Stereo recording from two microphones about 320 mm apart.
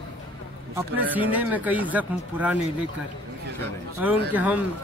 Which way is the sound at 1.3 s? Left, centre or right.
Centre.